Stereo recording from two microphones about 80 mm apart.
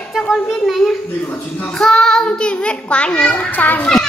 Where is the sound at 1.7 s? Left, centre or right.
Centre.